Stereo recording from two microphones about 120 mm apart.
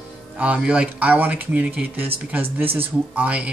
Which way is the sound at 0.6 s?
10° right (ahead or behind).